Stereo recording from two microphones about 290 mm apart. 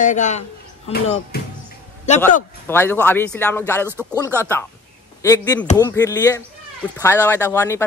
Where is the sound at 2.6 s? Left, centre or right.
Centre.